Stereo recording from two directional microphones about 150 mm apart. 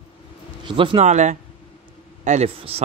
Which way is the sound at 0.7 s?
35° right (ahead or behind).